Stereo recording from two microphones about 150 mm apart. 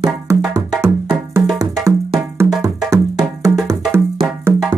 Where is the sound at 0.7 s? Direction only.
15° right (ahead or behind).